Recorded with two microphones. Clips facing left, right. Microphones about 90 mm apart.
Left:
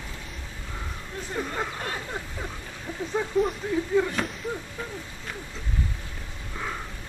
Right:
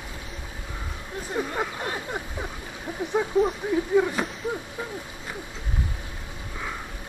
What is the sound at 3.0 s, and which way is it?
Speech, 15° right (ahead or behind).